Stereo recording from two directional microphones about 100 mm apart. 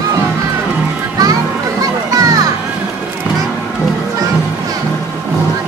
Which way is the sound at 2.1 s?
40° right (ahead or behind).